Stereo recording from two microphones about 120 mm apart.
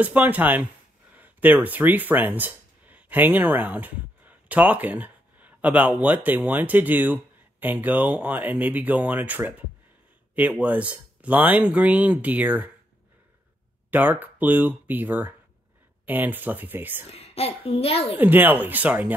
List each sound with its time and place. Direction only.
0.0 s speech: 15° right (ahead or behind)
10.6 s speech: 10° right (ahead or behind)
13.8 s speech: 15° right (ahead or behind)
17.1 s a child's voice: 55° left (ahead or behind)
18.1 s speech: 15° right (ahead or behind)